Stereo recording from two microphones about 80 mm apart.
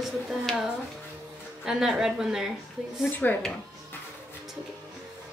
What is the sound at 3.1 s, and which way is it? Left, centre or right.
Speech, left.